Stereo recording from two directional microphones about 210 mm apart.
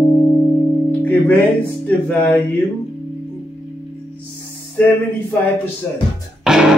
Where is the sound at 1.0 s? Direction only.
5° left (ahead or behind).